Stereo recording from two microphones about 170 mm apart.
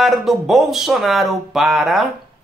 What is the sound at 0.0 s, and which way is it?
Speech, centre (ahead or behind).